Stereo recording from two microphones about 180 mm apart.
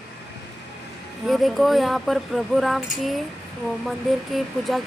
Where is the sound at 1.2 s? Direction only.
Centre (ahead or behind).